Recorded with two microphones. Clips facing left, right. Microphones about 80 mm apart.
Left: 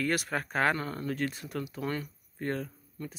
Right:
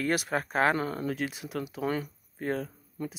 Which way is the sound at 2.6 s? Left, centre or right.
Centre.